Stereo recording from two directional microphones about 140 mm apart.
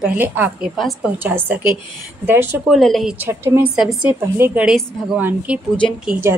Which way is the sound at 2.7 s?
Centre (ahead or behind).